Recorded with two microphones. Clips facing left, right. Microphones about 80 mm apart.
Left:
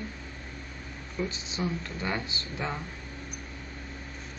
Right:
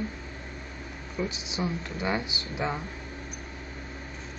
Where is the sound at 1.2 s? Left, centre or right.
Centre.